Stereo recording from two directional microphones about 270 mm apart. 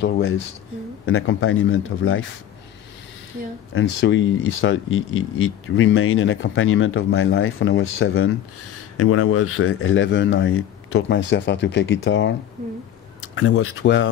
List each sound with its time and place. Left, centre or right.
1.0 s speech: left
3.7 s speech: left
8.9 s speech: left